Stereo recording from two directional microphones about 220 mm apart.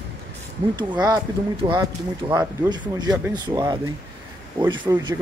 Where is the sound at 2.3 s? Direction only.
15° right (ahead or behind).